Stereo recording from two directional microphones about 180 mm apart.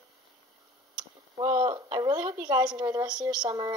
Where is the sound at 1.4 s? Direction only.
20° right (ahead or behind).